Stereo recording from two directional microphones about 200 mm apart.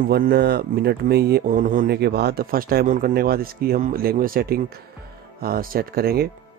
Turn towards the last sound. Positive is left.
turn(degrees=-50)  # may be behind; listen again after turning